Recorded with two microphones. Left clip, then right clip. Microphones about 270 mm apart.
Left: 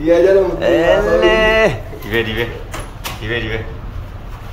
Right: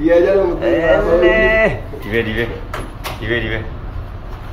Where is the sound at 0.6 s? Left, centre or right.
Left; by 3.6 s centre.